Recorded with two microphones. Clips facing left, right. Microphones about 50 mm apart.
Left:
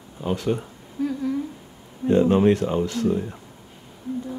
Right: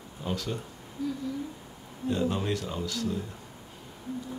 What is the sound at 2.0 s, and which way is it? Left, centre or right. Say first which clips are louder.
Speech: left 12 dB; left.